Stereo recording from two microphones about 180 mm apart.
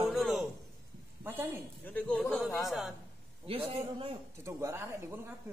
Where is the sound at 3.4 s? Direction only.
30° right (ahead or behind).